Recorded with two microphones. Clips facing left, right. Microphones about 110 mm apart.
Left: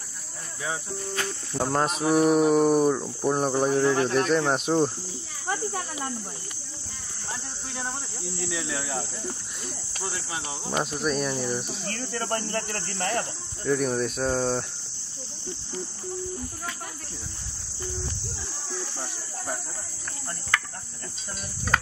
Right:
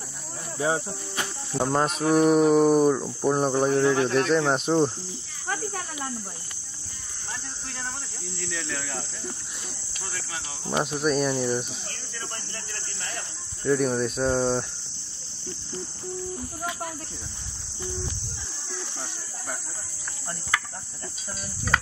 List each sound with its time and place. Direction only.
0.6 s cricket: 35° right (ahead or behind)
1.5 s speech: 5° right (ahead or behind)
5.5 s cricket: 10° left (ahead or behind)
8.4 s speech: 10° left (ahead or behind)
10.0 s speech: 20° left (ahead or behind)
10.7 s speech: 5° right (ahead or behind)
11.8 s speech: 55° left (ahead or behind)
13.7 s speech: centre (ahead or behind)